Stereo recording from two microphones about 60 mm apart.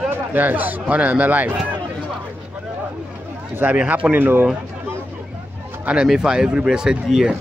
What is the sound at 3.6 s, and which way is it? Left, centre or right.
Speech, right.